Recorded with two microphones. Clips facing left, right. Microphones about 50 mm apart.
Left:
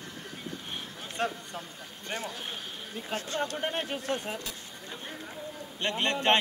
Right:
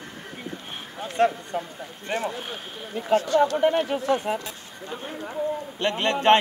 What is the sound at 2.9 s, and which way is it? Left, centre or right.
Speech, right.